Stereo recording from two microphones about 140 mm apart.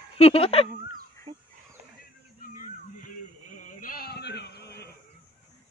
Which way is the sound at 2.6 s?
70° left (ahead or behind).